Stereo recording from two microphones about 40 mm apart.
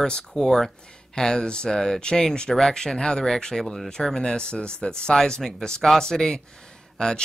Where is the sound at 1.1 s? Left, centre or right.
Centre.